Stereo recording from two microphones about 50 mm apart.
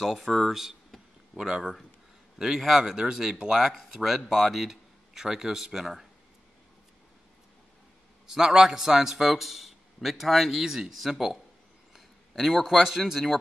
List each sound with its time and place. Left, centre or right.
0.0 s speech: centre
1.3 s a man's voice: centre
8.3 s a man's voice: centre